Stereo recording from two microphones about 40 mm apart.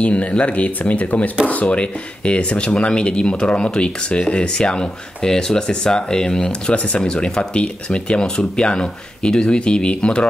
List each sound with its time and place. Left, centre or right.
0.0 s speech: left
1.7 s speech: left